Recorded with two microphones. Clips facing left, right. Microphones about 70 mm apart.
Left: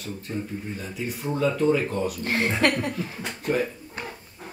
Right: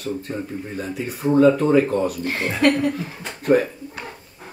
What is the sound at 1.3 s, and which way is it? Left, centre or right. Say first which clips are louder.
Speech: right 8 dB; right.